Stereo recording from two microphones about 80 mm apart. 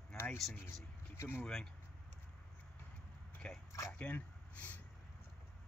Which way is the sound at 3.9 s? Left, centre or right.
Centre.